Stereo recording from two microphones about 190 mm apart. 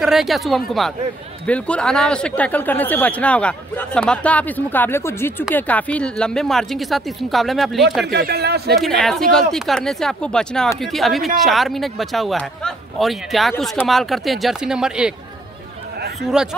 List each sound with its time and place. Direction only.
0.0 s speech: centre (ahead or behind)
8.1 s speech: 60° right (ahead or behind)
8.6 s speech: centre (ahead or behind)
16.3 s speech: 5° right (ahead or behind)